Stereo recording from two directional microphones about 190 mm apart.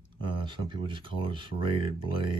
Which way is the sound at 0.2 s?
25° right (ahead or behind).